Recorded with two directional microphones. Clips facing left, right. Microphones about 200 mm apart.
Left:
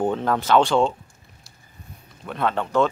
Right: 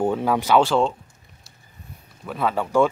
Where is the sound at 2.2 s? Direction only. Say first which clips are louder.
Even; 5° right (ahead or behind).